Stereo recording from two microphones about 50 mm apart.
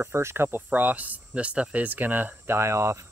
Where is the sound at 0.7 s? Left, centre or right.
Right.